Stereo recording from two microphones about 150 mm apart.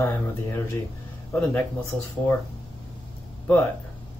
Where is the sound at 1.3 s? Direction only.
10° left (ahead or behind).